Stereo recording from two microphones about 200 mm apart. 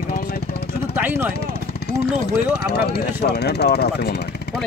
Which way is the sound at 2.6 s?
50° left (ahead or behind).